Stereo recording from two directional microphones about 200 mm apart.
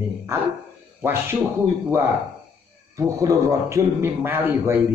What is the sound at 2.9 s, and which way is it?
A man's voice, 15° right (ahead or behind).